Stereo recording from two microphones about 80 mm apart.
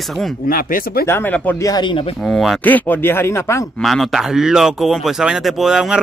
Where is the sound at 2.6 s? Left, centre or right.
Left.